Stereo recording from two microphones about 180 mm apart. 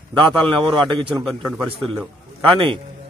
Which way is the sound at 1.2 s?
5° right (ahead or behind).